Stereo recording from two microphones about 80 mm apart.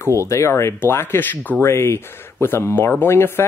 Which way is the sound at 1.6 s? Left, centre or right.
Left.